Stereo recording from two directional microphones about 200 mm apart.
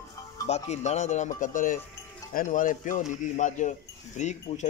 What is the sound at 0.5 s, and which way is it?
Speech, 35° left (ahead or behind).